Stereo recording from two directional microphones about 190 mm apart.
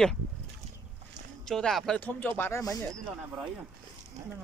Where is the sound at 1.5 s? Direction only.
Centre (ahead or behind).